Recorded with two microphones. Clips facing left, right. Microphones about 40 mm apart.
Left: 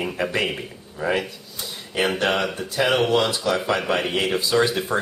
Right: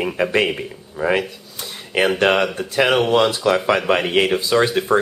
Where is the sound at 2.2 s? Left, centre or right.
Right.